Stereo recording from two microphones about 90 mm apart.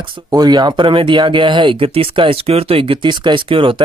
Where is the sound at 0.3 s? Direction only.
50° right (ahead or behind).